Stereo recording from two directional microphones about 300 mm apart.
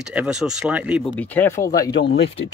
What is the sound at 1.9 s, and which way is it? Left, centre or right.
Speech, left.